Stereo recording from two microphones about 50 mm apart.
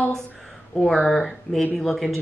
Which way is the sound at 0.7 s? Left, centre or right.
Centre.